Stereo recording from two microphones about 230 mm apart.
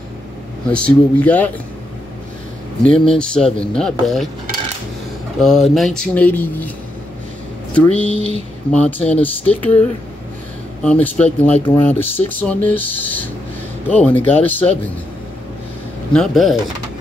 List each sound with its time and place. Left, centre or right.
0.7 s speech: centre
2.8 s speech: centre
5.4 s speech: centre
7.7 s speech: centre
16.1 s speech: centre